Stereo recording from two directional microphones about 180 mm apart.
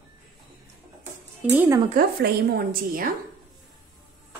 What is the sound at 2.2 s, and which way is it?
Speech, 55° right (ahead or behind).